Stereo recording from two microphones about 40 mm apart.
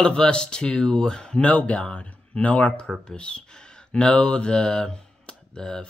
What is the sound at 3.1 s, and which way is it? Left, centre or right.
Speech, left.